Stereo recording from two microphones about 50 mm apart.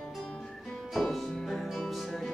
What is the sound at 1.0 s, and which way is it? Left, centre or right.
Music, centre.